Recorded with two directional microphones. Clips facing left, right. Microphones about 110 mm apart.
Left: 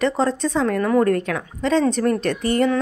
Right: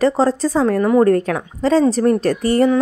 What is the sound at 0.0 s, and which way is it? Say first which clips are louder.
A woman's voice: right 5 dB; 35° right (ahead or behind).